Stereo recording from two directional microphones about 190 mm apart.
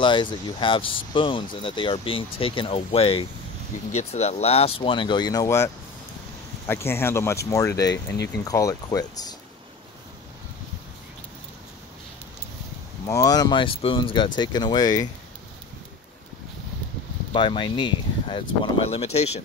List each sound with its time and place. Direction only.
0.0 s speech: 25° left (ahead or behind)
6.7 s speech: 10° left (ahead or behind)
13.0 s speech: 20° left (ahead or behind)
17.3 s speech: 25° left (ahead or behind)